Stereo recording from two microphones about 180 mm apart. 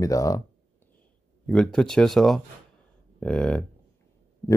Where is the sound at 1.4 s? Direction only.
5° left (ahead or behind).